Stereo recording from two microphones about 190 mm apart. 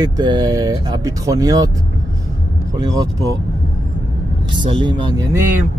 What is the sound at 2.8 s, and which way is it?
Speech, 20° right (ahead or behind).